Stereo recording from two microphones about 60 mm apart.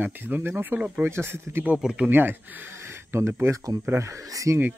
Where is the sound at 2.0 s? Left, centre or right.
Right.